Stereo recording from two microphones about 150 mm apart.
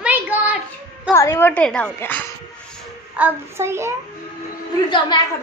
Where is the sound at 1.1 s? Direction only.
20° left (ahead or behind).